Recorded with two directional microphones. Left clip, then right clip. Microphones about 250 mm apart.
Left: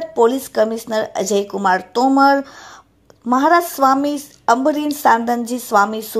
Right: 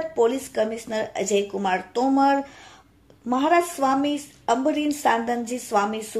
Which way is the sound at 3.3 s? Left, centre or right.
Left.